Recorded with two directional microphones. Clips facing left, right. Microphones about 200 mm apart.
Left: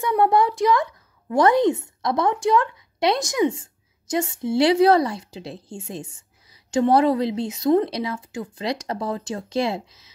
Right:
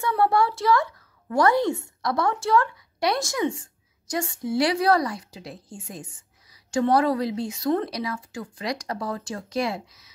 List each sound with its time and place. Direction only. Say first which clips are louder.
0.0 s a child's voice: left 3 dB; 20° left (ahead or behind)